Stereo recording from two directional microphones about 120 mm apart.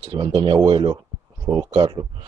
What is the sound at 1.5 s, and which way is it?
Speech, 35° right (ahead or behind).